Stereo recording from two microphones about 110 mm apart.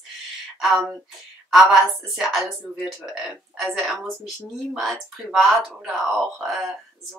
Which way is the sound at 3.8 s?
Centre (ahead or behind).